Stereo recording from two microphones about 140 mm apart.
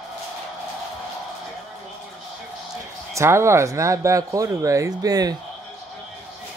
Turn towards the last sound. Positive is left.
turn(degrees=-25)  # may be behind; listen again after turning